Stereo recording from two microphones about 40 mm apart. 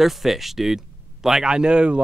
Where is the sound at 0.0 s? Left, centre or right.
Centre.